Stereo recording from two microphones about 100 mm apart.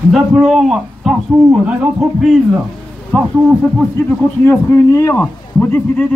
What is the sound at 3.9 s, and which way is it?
Speech, 20° left (ahead or behind).